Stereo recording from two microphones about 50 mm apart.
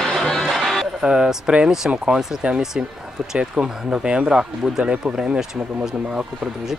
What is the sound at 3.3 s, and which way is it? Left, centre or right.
Speech, centre.